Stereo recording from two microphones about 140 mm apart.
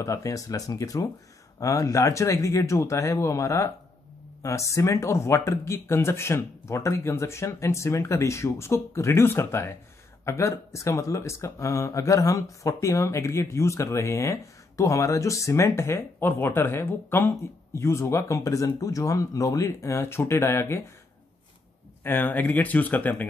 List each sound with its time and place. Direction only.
0.0 s speech: 20° left (ahead or behind)
22.0 s speech: 15° left (ahead or behind)